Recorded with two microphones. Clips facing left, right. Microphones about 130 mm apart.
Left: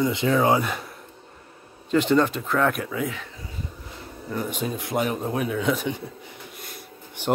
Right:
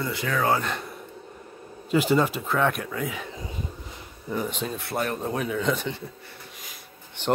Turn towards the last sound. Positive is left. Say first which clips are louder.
# left 1 dB
turn(degrees=10)  # may be behind; listen again after turning